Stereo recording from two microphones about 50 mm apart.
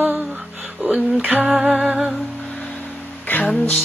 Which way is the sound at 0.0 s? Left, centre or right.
Right.